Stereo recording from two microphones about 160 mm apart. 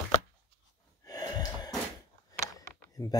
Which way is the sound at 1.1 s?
25° left (ahead or behind).